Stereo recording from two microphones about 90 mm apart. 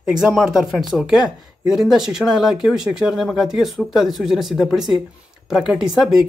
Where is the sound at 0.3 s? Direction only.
Centre (ahead or behind).